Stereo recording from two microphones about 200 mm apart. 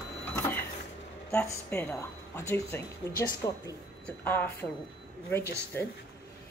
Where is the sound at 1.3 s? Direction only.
5° left (ahead or behind).